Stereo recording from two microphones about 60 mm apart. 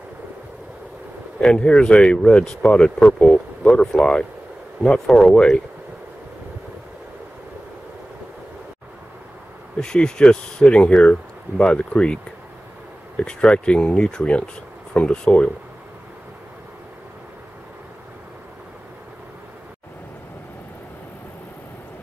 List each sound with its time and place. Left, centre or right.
1.4 s speech: centre
9.8 s speech: centre
13.2 s speech: centre